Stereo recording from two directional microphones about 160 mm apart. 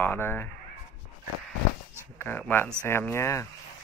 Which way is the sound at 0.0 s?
15° left (ahead or behind).